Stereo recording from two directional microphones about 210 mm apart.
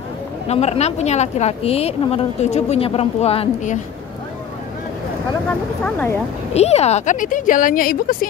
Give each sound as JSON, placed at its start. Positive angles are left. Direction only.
{"t": 0.5, "sound": "a woman's voice", "side_deg": 30}
{"t": 5.5, "sound": "speech", "side_deg": 5}
{"t": 6.5, "sound": "a woman's voice", "side_deg": 30}